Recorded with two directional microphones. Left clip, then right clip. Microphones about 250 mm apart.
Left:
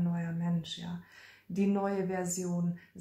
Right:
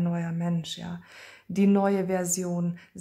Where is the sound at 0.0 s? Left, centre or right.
Right.